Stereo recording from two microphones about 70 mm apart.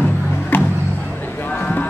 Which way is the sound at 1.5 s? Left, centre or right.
Left.